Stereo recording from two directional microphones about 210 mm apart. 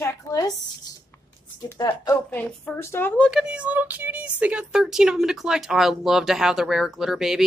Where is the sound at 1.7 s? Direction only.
15° left (ahead or behind).